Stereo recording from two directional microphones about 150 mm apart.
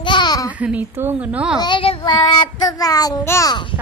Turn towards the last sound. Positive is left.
turn(degrees=30)  # may be behind; listen again after turning